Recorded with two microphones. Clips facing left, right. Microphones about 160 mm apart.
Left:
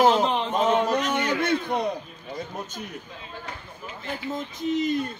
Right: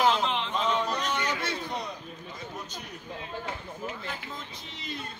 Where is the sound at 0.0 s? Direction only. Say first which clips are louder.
Left 6 dB; 40° left (ahead or behind).